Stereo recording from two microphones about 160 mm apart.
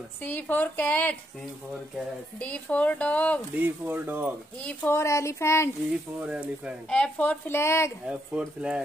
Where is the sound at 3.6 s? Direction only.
10° right (ahead or behind).